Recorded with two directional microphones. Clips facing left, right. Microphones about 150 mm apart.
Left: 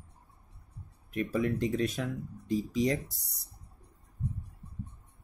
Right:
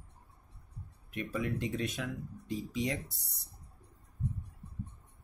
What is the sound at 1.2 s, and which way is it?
Speech, 40° left (ahead or behind).